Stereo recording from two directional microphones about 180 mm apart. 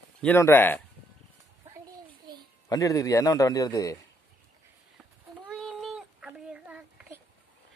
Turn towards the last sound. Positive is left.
turn(degrees=-5)  # may be behind; listen again after turning